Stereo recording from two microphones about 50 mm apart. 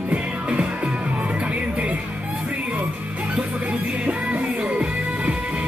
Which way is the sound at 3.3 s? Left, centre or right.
Right.